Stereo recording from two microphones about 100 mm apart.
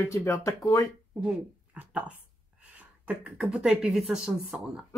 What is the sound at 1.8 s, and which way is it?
Speech, 15° right (ahead or behind).